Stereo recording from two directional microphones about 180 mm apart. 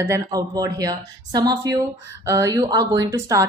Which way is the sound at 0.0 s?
20° right (ahead or behind).